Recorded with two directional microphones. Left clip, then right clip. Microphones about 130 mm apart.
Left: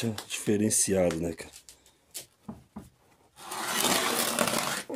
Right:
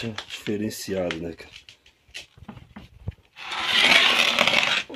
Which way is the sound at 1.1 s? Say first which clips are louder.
Right 1 dB; 10° left (ahead or behind).